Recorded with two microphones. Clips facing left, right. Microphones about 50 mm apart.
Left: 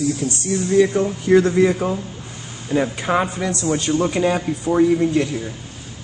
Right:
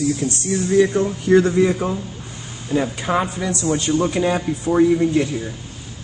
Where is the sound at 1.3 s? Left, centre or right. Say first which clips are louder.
Even; left.